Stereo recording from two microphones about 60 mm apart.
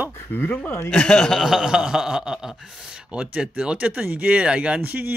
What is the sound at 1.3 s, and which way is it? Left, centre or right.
Speech, centre.